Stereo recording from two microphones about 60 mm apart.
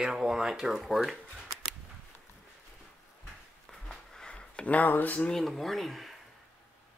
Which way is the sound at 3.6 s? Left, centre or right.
Centre.